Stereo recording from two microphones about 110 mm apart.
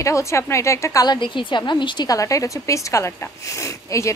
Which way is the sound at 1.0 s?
45° left (ahead or behind).